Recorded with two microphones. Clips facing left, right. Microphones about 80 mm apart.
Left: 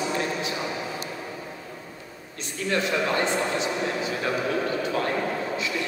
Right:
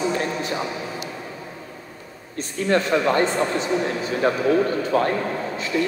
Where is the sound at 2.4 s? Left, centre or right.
Right.